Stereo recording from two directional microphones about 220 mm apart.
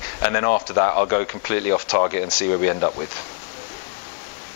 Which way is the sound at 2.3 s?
15° left (ahead or behind).